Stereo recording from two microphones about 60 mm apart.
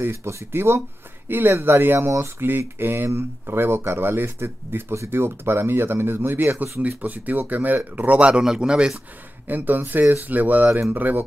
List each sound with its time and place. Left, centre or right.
0.0 s speech: right; by 8.9 s centre
9.5 s speech: right